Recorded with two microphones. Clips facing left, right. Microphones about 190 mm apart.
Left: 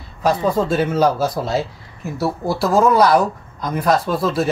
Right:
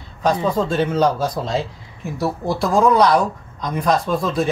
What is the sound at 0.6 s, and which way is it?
Speech, 10° left (ahead or behind).